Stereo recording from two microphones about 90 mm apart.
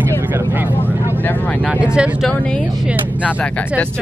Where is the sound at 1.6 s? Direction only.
10° right (ahead or behind).